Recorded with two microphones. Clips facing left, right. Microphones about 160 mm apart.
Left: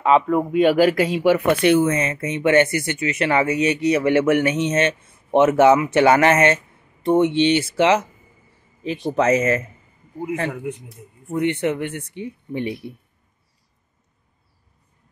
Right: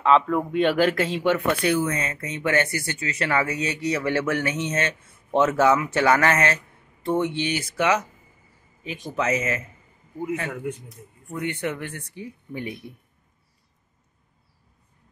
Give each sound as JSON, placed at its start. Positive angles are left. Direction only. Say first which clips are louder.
{"t": 0.0, "sound": "speech", "louder": "left 3 dB", "side_deg": 10}
{"t": 1.4, "sound": "speech", "louder": "left 6 dB", "side_deg": 20}
{"t": 8.8, "sound": "speech", "louder": "left 7 dB", "side_deg": 40}
{"t": 10.9, "sound": "speech", "louder": "left 7 dB", "side_deg": 25}